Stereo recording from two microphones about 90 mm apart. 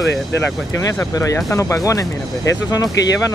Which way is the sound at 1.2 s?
35° left (ahead or behind).